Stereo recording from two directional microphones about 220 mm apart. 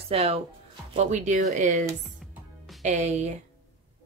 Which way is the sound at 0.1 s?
30° right (ahead or behind).